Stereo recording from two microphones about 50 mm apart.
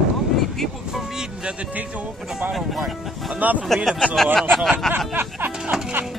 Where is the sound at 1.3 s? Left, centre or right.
Centre.